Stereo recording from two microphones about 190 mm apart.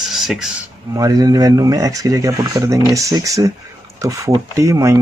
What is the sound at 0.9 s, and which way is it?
Speech, 20° right (ahead or behind).